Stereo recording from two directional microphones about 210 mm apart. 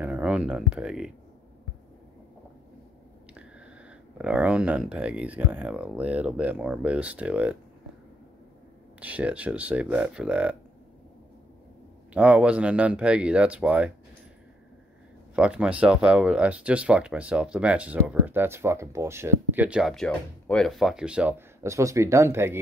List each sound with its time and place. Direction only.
0.0 s speech: 5° right (ahead or behind)
4.2 s speech: 5° right (ahead or behind)
9.0 s speech: 5° right (ahead or behind)
12.1 s speech: 5° right (ahead or behind)
15.3 s speech: 5° right (ahead or behind)